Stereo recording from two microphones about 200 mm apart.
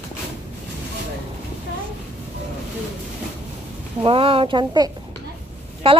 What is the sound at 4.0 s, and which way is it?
A woman's voice, 25° right (ahead or behind).